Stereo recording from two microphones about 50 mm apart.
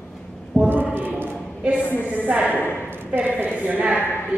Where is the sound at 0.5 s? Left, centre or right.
Right.